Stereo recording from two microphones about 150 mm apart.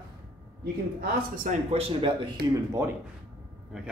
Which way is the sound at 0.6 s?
90° right.